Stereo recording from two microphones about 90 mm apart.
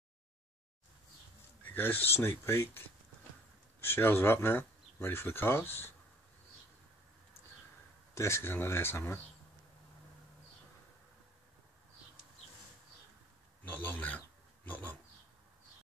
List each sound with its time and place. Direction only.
1.6 s speech: 20° left (ahead or behind)
3.8 s speech: 25° left (ahead or behind)
8.1 s speech: 30° left (ahead or behind)
13.7 s speech: 20° left (ahead or behind)